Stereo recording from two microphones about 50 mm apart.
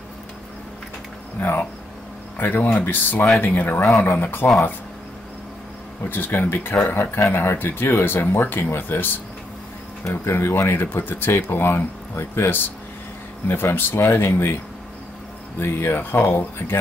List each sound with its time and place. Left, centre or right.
1.4 s speech: left
6.0 s speech: left
10.0 s speech: left
15.6 s speech: left